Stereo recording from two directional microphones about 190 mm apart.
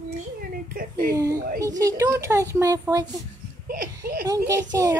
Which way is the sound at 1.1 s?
15° right (ahead or behind).